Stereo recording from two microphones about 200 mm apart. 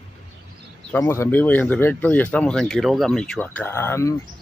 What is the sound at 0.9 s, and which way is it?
Speech, 10° left (ahead or behind).